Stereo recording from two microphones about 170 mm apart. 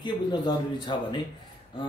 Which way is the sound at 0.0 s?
25° left (ahead or behind).